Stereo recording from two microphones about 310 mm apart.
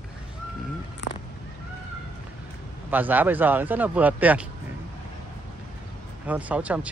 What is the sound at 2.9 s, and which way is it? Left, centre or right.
Speech, centre.